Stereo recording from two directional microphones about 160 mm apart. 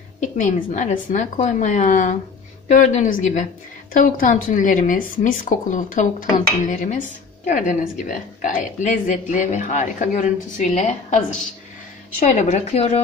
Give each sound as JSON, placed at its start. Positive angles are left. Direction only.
{"t": 0.2, "sound": "a woman's voice", "side_deg": 50}